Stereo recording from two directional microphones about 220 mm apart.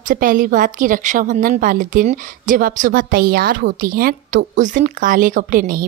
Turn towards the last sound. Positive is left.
turn(degrees=-40)  # may be behind; listen again after turning